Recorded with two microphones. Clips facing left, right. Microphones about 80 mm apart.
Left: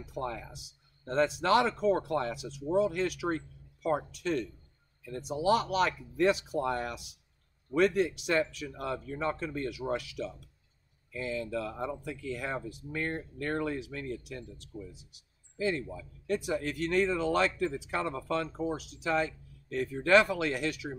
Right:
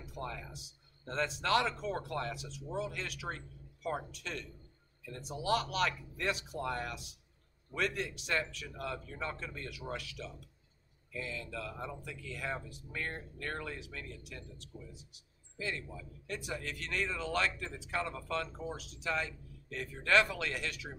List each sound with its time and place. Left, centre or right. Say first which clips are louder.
0.1 s speech: left 6 dB; centre
16.3 s speech: left 9 dB; centre